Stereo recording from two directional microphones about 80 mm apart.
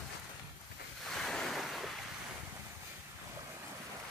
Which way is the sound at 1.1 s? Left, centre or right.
Centre.